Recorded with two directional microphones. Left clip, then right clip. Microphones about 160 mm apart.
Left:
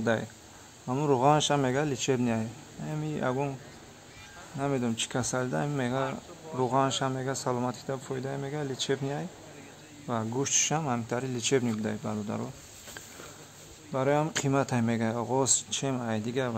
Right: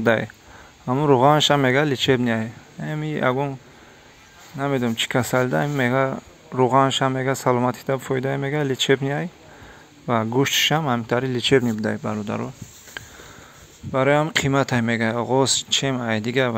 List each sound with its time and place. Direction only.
0.0 s speech: 30° right (ahead or behind)
4.6 s speech: 20° right (ahead or behind)
11.8 s speech: 40° right (ahead or behind)
13.9 s speech: 25° right (ahead or behind)